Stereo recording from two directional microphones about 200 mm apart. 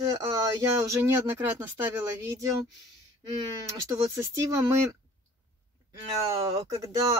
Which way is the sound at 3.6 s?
15° right (ahead or behind).